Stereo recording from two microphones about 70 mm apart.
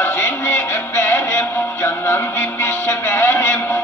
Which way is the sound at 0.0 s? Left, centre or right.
Left.